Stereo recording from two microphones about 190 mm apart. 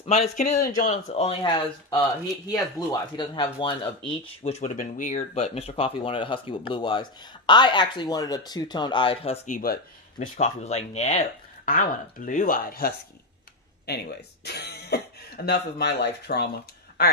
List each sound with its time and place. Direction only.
0.0 s speech: 35° left (ahead or behind)
9.5 s speech: 45° left (ahead or behind)